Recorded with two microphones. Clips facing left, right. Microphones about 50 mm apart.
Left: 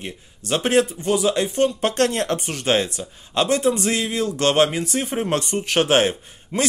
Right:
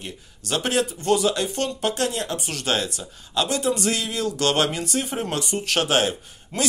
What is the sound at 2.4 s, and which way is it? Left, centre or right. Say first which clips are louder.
A man's voice: left 4 dB; left.